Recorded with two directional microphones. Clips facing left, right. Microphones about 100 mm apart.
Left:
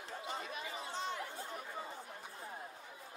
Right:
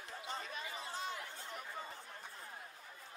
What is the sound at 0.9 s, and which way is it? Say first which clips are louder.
Chatter: left 3 dB; 5° right (ahead or behind).